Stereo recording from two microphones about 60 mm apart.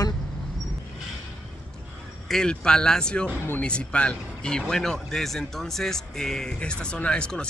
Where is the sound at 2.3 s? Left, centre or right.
Centre.